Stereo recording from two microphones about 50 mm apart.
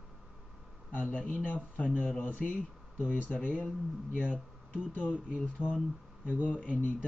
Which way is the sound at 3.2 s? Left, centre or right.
Left.